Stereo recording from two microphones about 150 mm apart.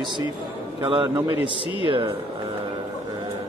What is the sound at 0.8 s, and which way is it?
Speech, 35° right (ahead or behind).